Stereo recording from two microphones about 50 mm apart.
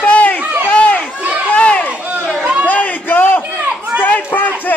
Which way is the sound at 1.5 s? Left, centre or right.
Left.